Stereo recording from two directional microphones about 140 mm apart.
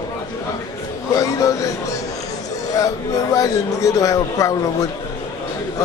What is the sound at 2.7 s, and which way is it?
Speech, 25° left (ahead or behind).